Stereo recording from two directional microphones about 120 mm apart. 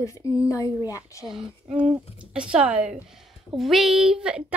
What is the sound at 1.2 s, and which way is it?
Child singing, 5° right (ahead or behind).